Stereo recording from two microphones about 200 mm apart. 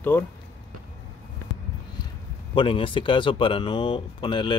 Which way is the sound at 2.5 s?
25° left (ahead or behind).